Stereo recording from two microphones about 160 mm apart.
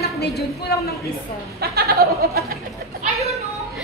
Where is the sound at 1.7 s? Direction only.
75° right (ahead or behind).